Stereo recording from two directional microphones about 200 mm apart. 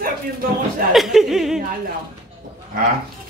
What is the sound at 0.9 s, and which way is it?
Speech, centre (ahead or behind).